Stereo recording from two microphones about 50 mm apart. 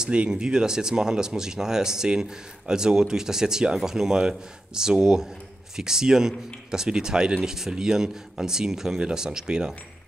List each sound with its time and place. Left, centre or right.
0.0 s speech: centre